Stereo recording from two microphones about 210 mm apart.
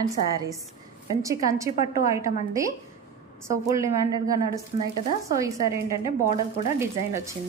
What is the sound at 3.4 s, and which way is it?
Speech, 15° right (ahead or behind).